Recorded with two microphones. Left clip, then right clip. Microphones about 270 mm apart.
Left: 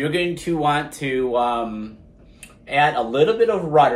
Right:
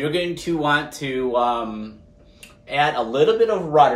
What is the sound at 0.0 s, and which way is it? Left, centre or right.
Speech, centre.